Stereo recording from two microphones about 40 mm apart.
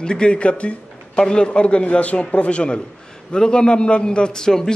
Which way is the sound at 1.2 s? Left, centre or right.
Left.